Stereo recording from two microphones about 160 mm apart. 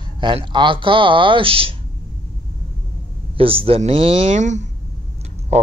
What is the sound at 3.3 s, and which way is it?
Speech, 35° right (ahead or behind).